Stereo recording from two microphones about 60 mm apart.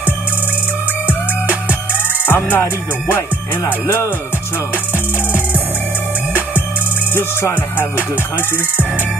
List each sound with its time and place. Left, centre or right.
1.0 s music: right
2.2 s music: left
4.9 s music: right